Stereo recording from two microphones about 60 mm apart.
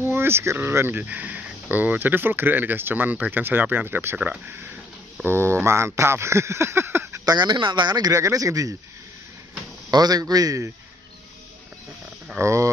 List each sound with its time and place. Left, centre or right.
0.0 s speech: right
4.2 s speech: right
5.2 s speech: right
7.9 s speech: right
9.8 s speech: right
12.4 s speech: right